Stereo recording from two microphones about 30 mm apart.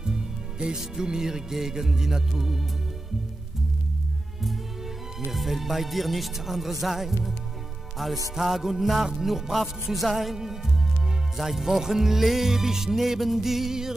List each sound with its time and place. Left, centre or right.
0.0 s music: right; by 2.6 s centre
5.3 s speech: centre
8.0 s music: centre